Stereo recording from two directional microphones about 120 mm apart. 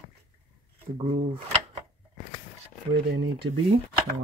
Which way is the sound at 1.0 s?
50° right (ahead or behind).